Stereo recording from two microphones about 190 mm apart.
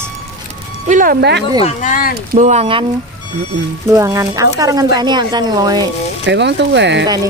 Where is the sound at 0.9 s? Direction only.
50° right (ahead or behind).